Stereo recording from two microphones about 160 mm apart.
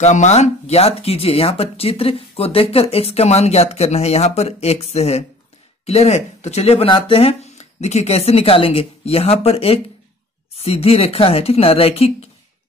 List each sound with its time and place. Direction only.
0.0 s speech: 45° left (ahead or behind)